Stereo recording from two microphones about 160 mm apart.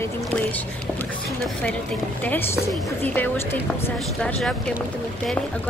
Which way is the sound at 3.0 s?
10° left (ahead or behind).